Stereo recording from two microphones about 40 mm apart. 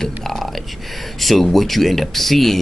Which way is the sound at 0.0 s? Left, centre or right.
Centre.